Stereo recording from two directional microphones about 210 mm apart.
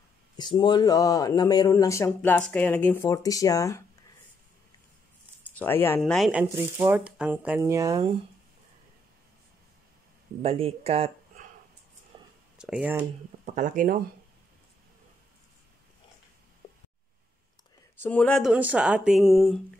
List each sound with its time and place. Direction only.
0.4 s speech: 20° left (ahead or behind)
5.6 s speech: 10° left (ahead or behind)
6.5 s speech: 10° right (ahead or behind)
10.4 s speech: 25° right (ahead or behind)
12.1 s a sound: 20° right (ahead or behind)
12.5 s speech: 5° right (ahead or behind)
13.6 s speech: 40° right (ahead or behind)
18.0 s speech: 5° left (ahead or behind)